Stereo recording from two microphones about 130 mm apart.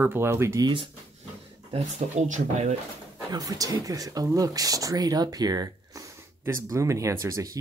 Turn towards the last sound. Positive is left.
turn(degrees=-25)  # may be behind; listen again after turning